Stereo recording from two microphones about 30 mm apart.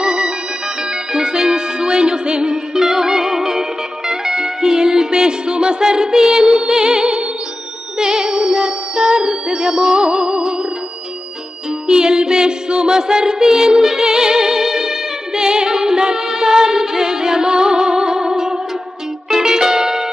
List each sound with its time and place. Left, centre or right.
0.0 s music: right
2.7 s music: centre
11.9 s music: right